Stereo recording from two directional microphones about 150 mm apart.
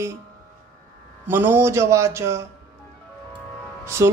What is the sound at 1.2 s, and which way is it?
A man's voice, 15° right (ahead or behind).